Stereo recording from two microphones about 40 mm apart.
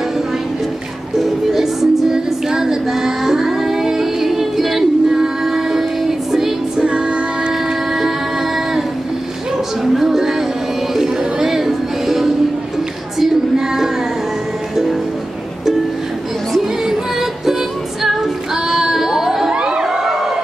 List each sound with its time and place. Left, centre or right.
1.5 s female singing: centre
6.9 s music: right
9.9 s music: centre
13.2 s female singing: centre
18.0 s singing: centre
19.5 s crowd: centre